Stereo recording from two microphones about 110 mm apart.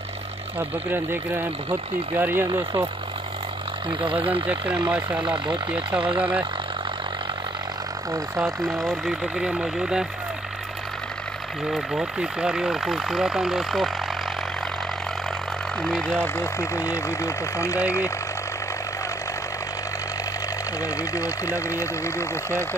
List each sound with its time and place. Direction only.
0.6 s speech: 20° right (ahead or behind)
4.0 s speech: 55° right (ahead or behind)
4.8 s speech: 15° right (ahead or behind)
5.2 s speech: 40° right (ahead or behind)
6.0 s speech: 55° right (ahead or behind)
8.5 s speech: 30° right (ahead or behind)
8.8 s speech: centre (ahead or behind)
11.7 s speech: 5° right (ahead or behind)
15.8 s speech: 10° left (ahead or behind)
16.3 s speech: 25° left (ahead or behind)
20.8 s speech: 30° left (ahead or behind)